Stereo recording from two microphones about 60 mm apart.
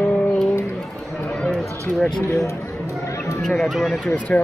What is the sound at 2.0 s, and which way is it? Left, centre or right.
Speech, centre.